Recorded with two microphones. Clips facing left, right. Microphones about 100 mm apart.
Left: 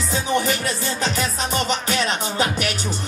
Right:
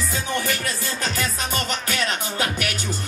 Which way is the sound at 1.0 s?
20° left (ahead or behind).